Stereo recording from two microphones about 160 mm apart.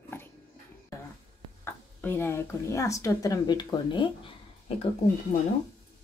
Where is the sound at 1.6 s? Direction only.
15° left (ahead or behind); by 4.1 s 30° left (ahead or behind).